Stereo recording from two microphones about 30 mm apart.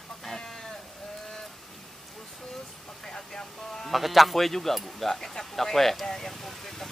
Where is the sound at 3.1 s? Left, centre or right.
Centre.